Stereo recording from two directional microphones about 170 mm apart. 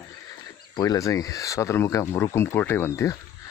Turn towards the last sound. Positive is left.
turn(degrees=15)  # may be behind; listen again after turning